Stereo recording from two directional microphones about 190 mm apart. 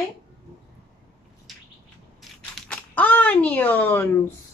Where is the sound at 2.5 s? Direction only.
10° left (ahead or behind).